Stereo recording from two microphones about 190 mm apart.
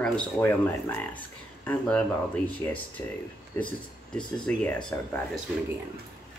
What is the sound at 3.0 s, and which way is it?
Speech, 10° left (ahead or behind).